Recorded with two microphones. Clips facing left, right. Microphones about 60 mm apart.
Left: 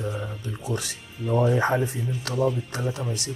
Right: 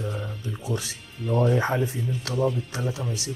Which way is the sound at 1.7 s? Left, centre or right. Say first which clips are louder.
Even; left.